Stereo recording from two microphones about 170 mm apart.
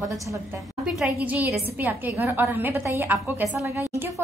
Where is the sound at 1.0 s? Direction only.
10° right (ahead or behind).